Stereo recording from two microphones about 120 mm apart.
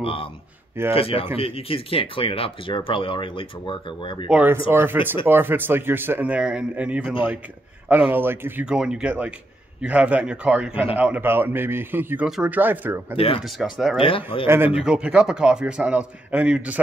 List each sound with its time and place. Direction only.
0.0 s speech: 50° left (ahead or behind)
4.3 s speech: 15° right (ahead or behind)
8.6 s speech: 5° right (ahead or behind)
12.3 s speech: 5° right (ahead or behind)
12.5 s speech: 15° right (ahead or behind)
13.4 s speech: centre (ahead or behind)
13.9 s speech: 50° left (ahead or behind)
14.8 s speech: 10° right (ahead or behind)